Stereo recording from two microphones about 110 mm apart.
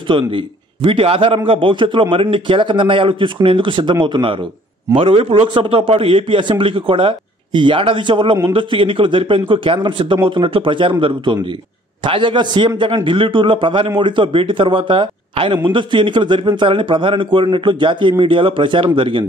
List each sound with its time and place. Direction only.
0.1 s a man's voice: 50° right (ahead or behind)